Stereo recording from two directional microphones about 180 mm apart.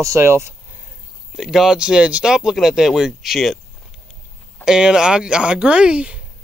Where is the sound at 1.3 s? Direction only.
Centre (ahead or behind).